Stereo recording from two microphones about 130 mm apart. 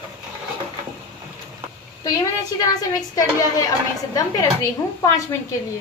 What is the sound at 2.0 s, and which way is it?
A woman's voice, 25° left (ahead or behind).